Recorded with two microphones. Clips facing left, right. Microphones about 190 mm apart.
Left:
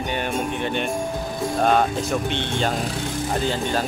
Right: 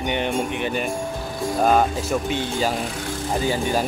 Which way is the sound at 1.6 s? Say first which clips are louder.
Right 1 dB; 5° right (ahead or behind).